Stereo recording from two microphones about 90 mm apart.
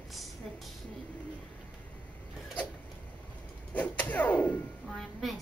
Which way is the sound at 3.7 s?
20° left (ahead or behind).